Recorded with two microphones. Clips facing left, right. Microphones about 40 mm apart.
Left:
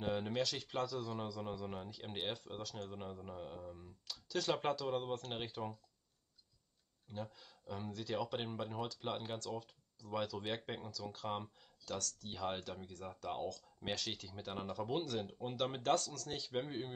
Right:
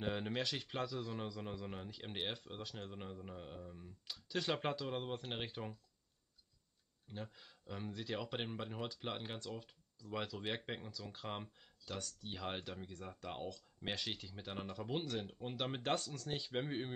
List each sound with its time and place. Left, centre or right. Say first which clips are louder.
0.0 s speech: left 2 dB; centre
7.1 s speech: left 3 dB; centre